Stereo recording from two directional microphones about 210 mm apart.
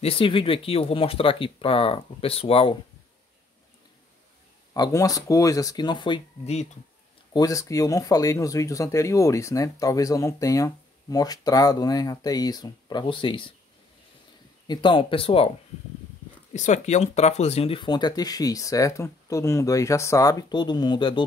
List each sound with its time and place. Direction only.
0.0 s speech: 25° left (ahead or behind)
4.7 s speech: 20° left (ahead or behind)
7.3 s speech: 15° left (ahead or behind)
14.7 s speech: 25° left (ahead or behind)
16.5 s speech: 35° left (ahead or behind)